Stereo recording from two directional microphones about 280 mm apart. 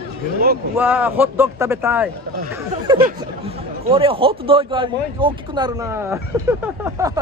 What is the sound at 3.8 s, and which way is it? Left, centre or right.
Speech, centre.